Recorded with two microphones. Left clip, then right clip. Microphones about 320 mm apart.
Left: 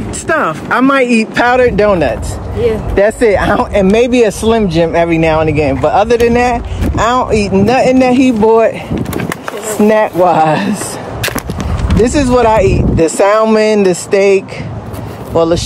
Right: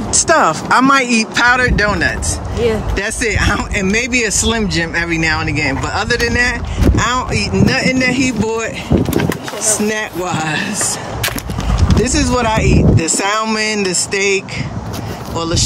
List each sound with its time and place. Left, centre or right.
0.3 s speech: centre
2.6 s speech: right
3.0 s speech: centre
9.8 s speech: centre
12.0 s speech: centre